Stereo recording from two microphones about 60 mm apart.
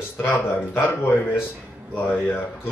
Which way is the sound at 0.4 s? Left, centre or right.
Left.